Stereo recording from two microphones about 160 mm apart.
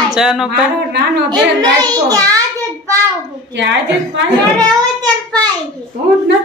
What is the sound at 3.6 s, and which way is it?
Speech, 90° right.